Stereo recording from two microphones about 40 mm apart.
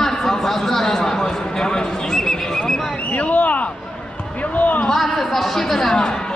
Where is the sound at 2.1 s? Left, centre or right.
Centre.